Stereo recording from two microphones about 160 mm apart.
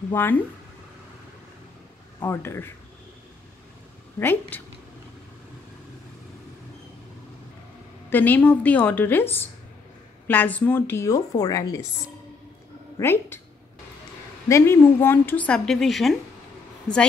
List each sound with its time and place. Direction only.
0.1 s a woman's voice: 10° left (ahead or behind)
2.2 s a woman's voice: 15° left (ahead or behind)
4.2 s a woman's voice: 10° left (ahead or behind)
8.1 s a woman's voice: 10° left (ahead or behind)
12.9 s speech: 15° left (ahead or behind)
14.5 s a woman's voice: 15° left (ahead or behind)